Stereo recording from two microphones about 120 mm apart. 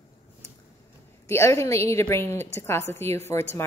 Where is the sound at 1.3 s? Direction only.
25° left (ahead or behind).